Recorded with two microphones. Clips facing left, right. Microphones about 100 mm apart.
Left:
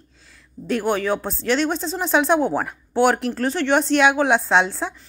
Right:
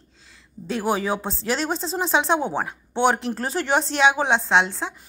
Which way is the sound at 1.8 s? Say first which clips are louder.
Left 1 dB; centre (ahead or behind).